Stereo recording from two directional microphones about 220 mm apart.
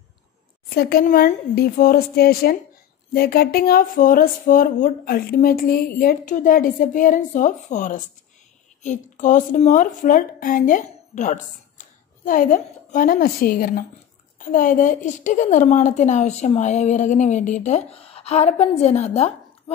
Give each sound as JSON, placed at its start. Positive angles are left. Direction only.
{"t": 0.7, "sound": "a woman's voice", "side_deg": 45}